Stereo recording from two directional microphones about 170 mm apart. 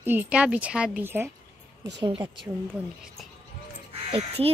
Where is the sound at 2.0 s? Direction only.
30° right (ahead or behind).